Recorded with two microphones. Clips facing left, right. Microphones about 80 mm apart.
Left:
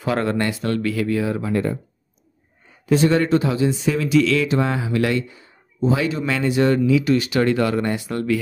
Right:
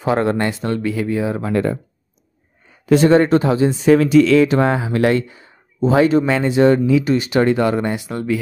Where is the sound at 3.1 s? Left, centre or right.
Right.